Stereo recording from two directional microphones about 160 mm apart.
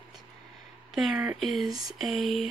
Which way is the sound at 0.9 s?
5° right (ahead or behind).